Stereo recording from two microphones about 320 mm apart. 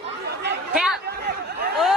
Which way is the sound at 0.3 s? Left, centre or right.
Right.